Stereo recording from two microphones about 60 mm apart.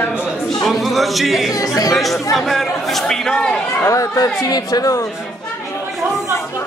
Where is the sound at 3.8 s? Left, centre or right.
Left.